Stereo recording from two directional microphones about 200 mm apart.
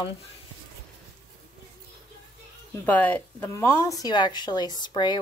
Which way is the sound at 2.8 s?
10° left (ahead or behind).